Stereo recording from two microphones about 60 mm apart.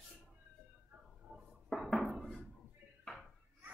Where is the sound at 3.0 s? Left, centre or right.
Centre.